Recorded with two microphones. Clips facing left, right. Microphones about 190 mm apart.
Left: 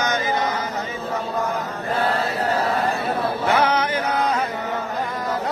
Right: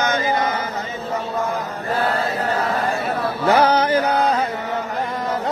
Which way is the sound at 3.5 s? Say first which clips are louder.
Right 7 dB; 30° right (ahead or behind).